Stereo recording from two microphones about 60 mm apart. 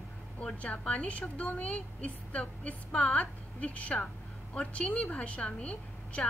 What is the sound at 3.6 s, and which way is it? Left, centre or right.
A woman's voice, left.